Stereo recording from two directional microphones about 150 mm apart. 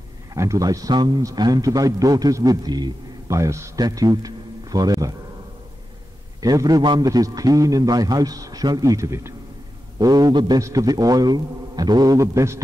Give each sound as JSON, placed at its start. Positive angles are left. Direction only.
{"t": 0.3, "sound": "a man's voice", "side_deg": -20}
{"t": 6.4, "sound": "a man's voice", "side_deg": -25}